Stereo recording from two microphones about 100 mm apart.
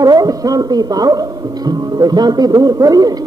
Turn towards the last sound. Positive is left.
turn(degrees=-40)  # may be behind; listen again after turning